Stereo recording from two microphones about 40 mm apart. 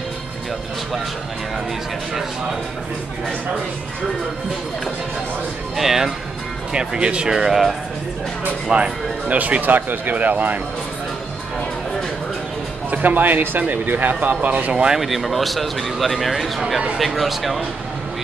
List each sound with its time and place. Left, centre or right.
5.8 s speech: centre
6.7 s speech: right
7.3 s speech: centre
8.7 s speech: right
9.4 s speech: right
12.9 s speech: right
14.7 s speech: right
15.0 s speech: centre